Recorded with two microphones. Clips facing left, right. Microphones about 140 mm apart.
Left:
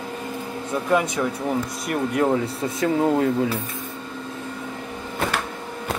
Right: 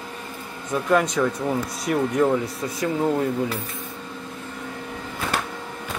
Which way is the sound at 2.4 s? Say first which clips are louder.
Left 3 dB; 25° left (ahead or behind).